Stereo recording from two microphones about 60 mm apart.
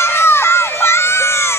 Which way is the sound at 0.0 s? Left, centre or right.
Left.